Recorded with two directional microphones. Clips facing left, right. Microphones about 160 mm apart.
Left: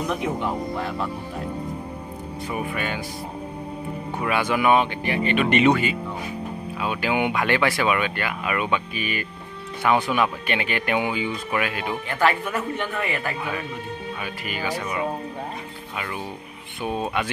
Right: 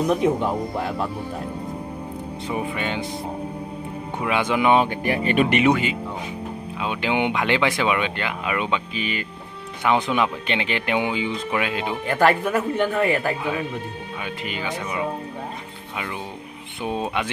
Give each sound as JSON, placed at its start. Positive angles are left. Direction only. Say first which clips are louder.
{"t": 2.5, "sound": "speech", "louder": "right 2 dB", "side_deg": -25}
{"t": 4.2, "sound": "speech", "louder": "right 1 dB", "side_deg": -20}
{"t": 4.8, "sound": "speech", "louder": "right 2 dB", "side_deg": -40}
{"t": 5.5, "sound": "speech", "louder": "even", "side_deg": -10}
{"t": 12.1, "sound": "speech", "louder": "right 4 dB", "side_deg": -45}
{"t": 14.2, "sound": "speech", "louder": "right 2 dB", "side_deg": -20}
{"t": 16.8, "sound": "speech", "louder": "even", "side_deg": -20}